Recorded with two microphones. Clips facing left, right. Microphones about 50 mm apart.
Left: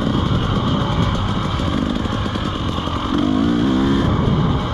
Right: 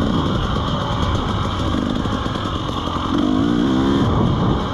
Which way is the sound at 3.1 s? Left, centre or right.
Left.